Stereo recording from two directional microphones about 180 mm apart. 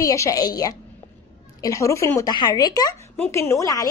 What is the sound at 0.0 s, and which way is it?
A woman's voice, 15° left (ahead or behind).